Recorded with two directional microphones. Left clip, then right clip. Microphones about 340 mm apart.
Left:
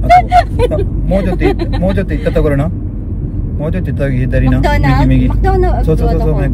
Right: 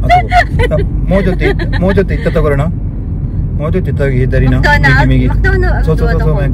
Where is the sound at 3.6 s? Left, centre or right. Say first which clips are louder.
Right 3 dB; centre.